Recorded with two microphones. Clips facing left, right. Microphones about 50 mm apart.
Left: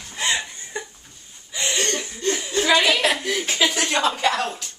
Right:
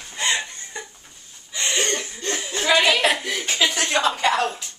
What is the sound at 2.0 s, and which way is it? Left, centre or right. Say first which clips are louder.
Chuckle: left 3 dB; centre.